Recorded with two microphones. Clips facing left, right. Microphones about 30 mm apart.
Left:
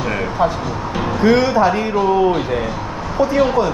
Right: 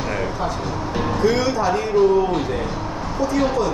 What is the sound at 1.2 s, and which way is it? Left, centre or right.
Speech, left.